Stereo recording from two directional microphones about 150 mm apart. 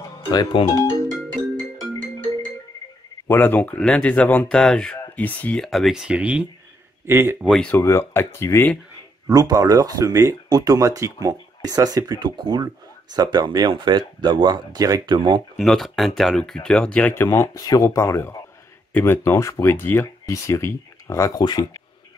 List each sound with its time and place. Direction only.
0.0 s speech: 25° left (ahead or behind)
3.3 s speech: 10° left (ahead or behind); by 7.3 s 15° right (ahead or behind)
7.6 s speech: 15° left (ahead or behind)
9.3 s speech: 25° right (ahead or behind)
15.5 s speech: centre (ahead or behind); by 21.8 s 25° left (ahead or behind)